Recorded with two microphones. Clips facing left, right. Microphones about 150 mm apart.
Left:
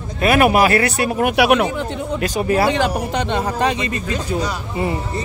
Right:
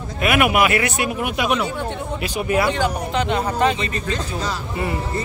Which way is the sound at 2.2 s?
40° left (ahead or behind).